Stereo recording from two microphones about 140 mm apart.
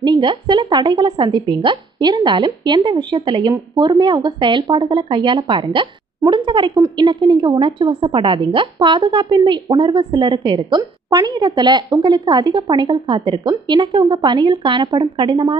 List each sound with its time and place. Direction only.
0.0 s a woman's voice: 35° right (ahead or behind)